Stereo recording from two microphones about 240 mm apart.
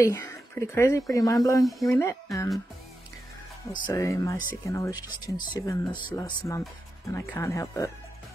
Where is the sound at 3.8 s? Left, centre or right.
Centre.